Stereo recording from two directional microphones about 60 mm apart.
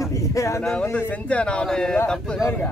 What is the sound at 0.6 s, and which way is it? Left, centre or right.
A man's voice, centre.